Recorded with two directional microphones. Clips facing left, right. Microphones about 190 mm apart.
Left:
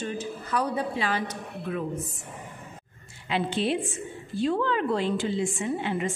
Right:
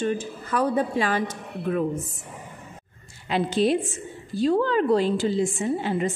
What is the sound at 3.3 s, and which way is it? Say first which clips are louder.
A woman's voice: right 5 dB; 40° right (ahead or behind).